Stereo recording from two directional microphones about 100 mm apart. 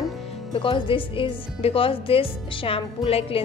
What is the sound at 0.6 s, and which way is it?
Speech, 60° left (ahead or behind).